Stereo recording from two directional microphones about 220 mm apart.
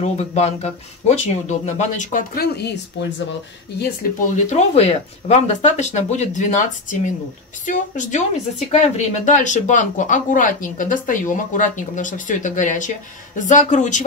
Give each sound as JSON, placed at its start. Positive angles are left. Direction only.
{"t": 0.0, "sound": "speech", "side_deg": 30}
{"t": 4.4, "sound": "speech", "side_deg": 30}